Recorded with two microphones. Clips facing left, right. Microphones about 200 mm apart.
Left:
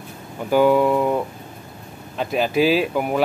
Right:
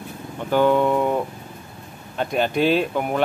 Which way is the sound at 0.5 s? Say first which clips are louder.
Left 2 dB; 5° left (ahead or behind).